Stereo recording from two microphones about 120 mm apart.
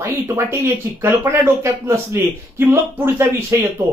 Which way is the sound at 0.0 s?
20° right (ahead or behind).